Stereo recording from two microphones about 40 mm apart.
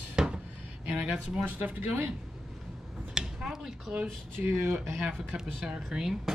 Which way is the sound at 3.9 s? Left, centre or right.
Right.